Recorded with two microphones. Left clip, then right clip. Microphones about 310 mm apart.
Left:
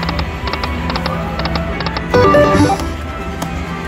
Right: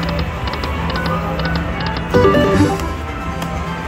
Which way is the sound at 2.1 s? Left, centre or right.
Left.